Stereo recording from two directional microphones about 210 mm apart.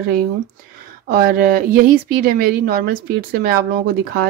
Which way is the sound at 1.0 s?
45° right (ahead or behind).